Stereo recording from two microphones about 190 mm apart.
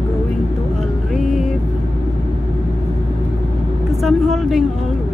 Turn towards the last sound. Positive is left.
turn(degrees=0)  # may be behind; listen again after turning